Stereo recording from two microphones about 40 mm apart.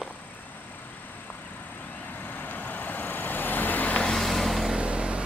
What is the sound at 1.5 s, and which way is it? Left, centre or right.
Vehicle, left.